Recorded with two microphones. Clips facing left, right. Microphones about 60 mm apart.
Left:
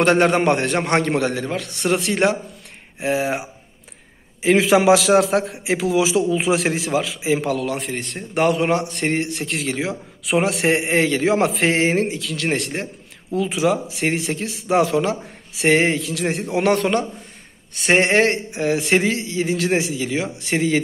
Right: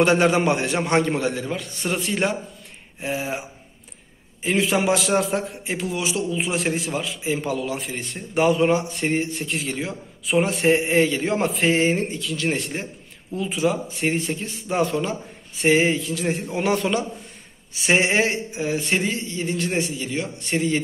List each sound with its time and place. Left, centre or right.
0.0 s a man's voice: left
1.8 s a man's voice: left
4.4 s a man's voice: left
13.3 s a man's voice: left
16.5 s a man's voice: left